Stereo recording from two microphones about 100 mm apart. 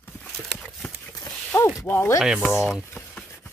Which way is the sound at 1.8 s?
30° left (ahead or behind).